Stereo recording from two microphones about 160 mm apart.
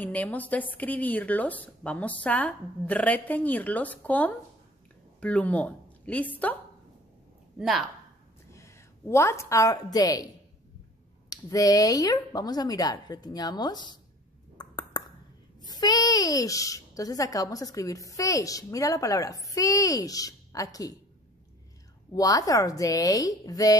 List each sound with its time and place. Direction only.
0.0 s a woman's voice: 10° left (ahead or behind)
7.5 s speech: centre (ahead or behind)
8.5 s a woman's voice: 15° left (ahead or behind)
11.2 s a child's voice: 20° left (ahead or behind)
14.6 s ping: 25° left (ahead or behind)
15.6 s a child's voice: 25° left (ahead or behind)
22.1 s a child's voice: 20° left (ahead or behind)